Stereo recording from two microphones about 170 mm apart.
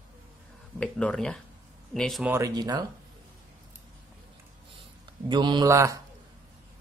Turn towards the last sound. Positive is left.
turn(degrees=-20)  # may be behind; listen again after turning